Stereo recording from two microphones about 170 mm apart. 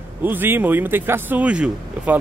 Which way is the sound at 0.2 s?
10° right (ahead or behind).